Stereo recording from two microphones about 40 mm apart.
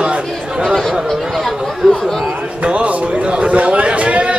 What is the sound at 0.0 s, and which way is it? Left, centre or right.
Chatter, right.